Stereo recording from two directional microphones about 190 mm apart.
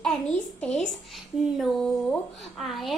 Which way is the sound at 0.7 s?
Centre (ahead or behind).